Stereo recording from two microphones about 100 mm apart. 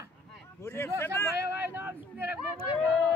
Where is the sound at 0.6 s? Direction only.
25° left (ahead or behind).